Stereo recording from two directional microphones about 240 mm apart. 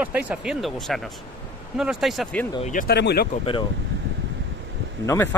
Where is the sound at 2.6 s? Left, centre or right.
Left.